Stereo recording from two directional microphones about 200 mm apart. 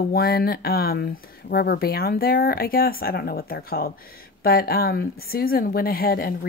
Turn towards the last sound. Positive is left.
turn(degrees=45)  # may be behind; listen again after turning